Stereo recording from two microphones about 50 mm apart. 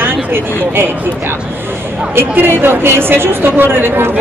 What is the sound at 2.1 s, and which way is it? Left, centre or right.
Speech, right.